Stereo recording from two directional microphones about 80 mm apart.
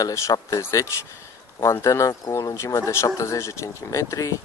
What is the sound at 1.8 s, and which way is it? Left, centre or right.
Speech, left.